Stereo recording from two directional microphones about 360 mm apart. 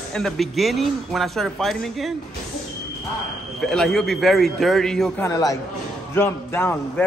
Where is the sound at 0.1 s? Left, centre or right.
Centre.